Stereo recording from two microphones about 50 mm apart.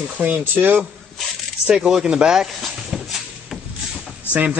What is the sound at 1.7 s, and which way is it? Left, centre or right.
Speech, centre.